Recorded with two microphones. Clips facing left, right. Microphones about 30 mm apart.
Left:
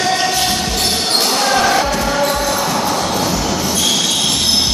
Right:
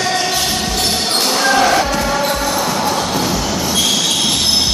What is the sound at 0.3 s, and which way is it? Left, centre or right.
Basketball bounce, centre.